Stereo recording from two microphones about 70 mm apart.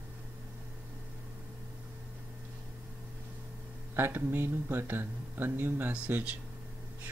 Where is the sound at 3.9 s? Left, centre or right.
Right.